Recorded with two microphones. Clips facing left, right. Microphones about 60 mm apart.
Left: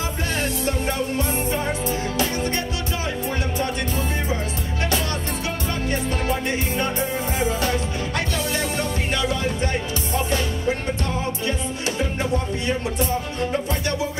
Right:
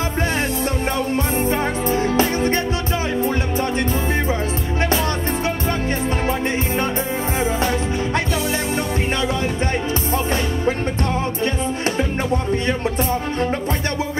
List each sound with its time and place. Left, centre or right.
1.1 s music: right
7.3 s music: right
10.1 s music: right
12.6 s music: right